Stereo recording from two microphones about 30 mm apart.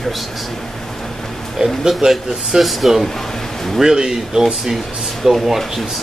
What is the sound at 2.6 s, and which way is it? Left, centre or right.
Speech, centre.